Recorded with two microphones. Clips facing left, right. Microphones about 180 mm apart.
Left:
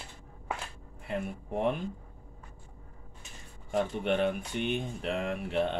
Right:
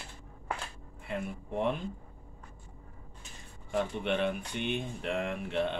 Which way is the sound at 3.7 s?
45° left (ahead or behind).